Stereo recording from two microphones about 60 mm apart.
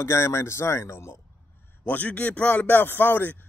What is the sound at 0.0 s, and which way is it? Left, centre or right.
Speech, left.